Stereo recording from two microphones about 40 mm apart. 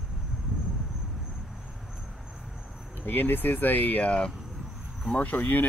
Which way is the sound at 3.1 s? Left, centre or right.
Left.